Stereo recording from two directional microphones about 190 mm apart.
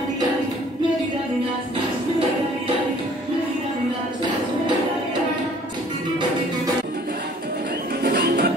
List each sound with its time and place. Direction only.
8.0 s music: 50° right (ahead or behind)